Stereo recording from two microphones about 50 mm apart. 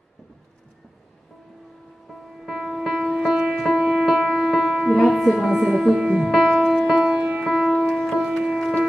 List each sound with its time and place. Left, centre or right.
2.0 s music: centre
5.0 s speech: centre
6.4 s music: centre
7.0 s music: centre
7.4 s music: centre